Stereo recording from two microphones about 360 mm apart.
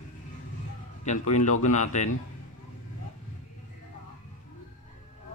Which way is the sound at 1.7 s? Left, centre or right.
Centre.